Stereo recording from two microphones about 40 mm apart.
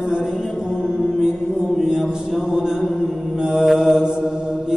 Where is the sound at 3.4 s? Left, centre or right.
Centre.